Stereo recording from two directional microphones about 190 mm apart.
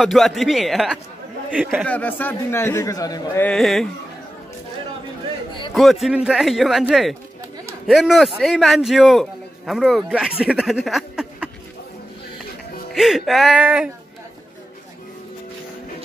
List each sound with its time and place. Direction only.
0.0 s a man's voice: centre (ahead or behind)
1.9 s a man's voice: 10° left (ahead or behind)
3.4 s a man's voice: centre (ahead or behind)
5.8 s a man's voice: centre (ahead or behind)
12.9 s a man's voice: centre (ahead or behind)